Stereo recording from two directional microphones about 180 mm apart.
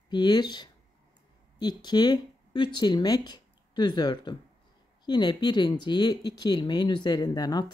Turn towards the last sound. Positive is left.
turn(degrees=20)  # may be behind; listen again after turning